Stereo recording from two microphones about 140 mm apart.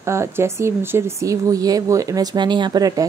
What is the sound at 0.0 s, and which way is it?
Speech, 20° right (ahead or behind).